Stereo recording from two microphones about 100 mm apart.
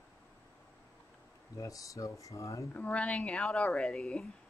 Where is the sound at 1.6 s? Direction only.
35° left (ahead or behind).